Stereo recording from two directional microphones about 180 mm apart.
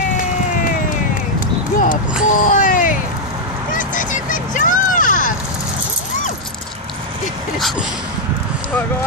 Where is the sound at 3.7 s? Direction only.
45° left (ahead or behind).